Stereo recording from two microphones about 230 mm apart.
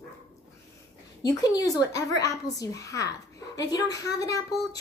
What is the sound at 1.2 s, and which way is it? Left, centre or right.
A woman's voice, centre.